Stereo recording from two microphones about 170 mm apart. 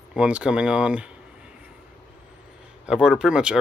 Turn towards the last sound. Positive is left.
turn(degrees=-5)  # may be behind; listen again after turning